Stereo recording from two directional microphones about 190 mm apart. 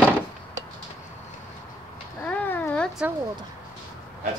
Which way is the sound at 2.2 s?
10° left (ahead or behind).